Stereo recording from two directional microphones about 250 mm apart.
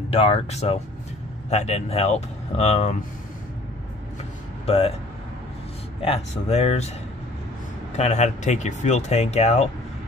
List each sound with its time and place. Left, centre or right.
0.1 s speech: left
4.6 s speech: left
6.0 s speech: left
7.9 s speech: left